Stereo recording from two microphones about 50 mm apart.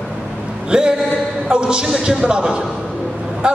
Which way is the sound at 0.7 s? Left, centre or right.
Centre.